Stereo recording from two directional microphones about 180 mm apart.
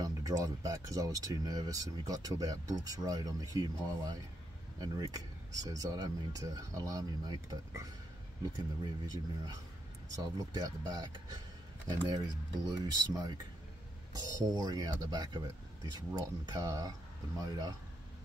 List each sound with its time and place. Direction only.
0.0 s speech: 20° right (ahead or behind)
14.5 s speech: 20° right (ahead or behind)